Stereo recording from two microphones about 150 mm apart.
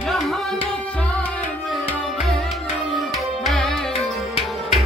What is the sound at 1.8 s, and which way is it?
Music, 5° left (ahead or behind).